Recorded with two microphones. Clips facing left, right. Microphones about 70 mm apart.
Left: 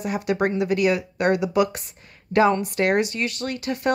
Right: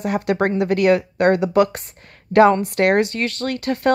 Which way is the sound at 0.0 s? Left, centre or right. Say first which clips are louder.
Right 3 dB; right.